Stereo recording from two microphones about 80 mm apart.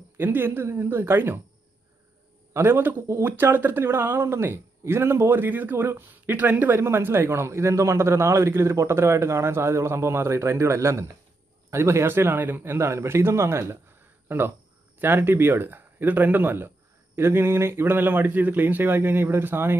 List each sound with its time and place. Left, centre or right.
0.2 s speech: right
2.5 s speech: right